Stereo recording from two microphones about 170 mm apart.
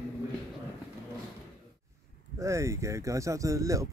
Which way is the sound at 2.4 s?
15° right (ahead or behind).